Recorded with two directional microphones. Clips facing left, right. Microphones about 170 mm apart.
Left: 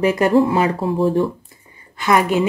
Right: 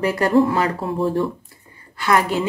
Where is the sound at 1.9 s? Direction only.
20° left (ahead or behind).